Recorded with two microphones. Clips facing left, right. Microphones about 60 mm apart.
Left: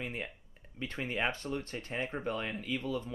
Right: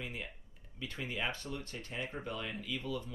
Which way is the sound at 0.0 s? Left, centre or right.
Left.